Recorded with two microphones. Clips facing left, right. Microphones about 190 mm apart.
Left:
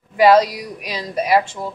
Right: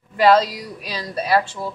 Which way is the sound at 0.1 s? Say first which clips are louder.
Left 3 dB; 15° left (ahead or behind).